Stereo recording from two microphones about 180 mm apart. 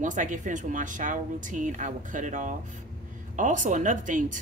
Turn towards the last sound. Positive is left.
turn(degrees=-45)  # may be behind; listen again after turning